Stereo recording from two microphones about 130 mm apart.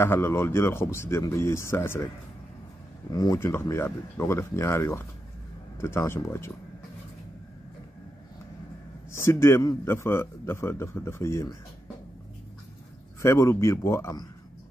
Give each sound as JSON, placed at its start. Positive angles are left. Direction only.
{"t": 0.0, "sound": "speech", "side_deg": 20}
{"t": 3.1, "sound": "speech", "side_deg": 25}
{"t": 9.1, "sound": "speech", "side_deg": 20}
{"t": 13.2, "sound": "speech", "side_deg": 20}